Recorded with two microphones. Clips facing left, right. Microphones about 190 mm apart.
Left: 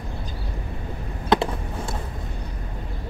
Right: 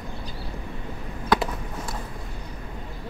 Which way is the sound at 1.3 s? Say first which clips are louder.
Left 3 dB; 25° left (ahead or behind).